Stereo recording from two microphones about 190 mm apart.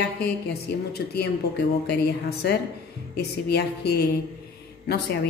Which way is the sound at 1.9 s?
60° left (ahead or behind).